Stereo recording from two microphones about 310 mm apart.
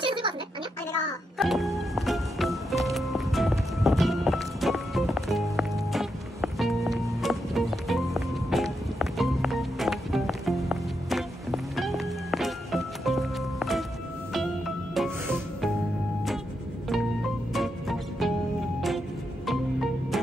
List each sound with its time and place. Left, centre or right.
0.0 s a sound: centre
1.4 s music: centre
15.0 s music: centre
17.6 s music: centre
19.4 s music: centre